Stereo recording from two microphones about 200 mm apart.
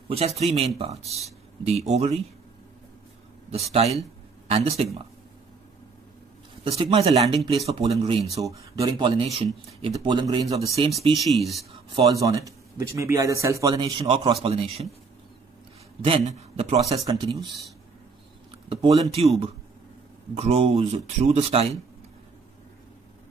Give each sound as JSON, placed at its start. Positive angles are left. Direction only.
{"t": 0.1, "sound": "speech", "side_deg": -30}
{"t": 3.5, "sound": "speech", "side_deg": -30}
{"t": 6.6, "sound": "speech", "side_deg": -25}
{"t": 8.5, "sound": "speech", "side_deg": -15}
{"t": 11.9, "sound": "a man's voice", "side_deg": -20}
{"t": 16.0, "sound": "speech", "side_deg": -30}
{"t": 16.9, "sound": "speech", "side_deg": -20}
{"t": 18.7, "sound": "speech", "side_deg": -25}
{"t": 20.3, "sound": "speech", "side_deg": -30}